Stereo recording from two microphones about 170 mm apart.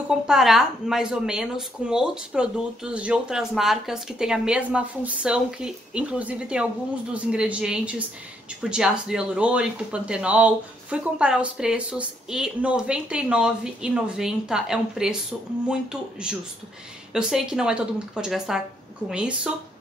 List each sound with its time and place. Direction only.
0.3 s speech: centre (ahead or behind)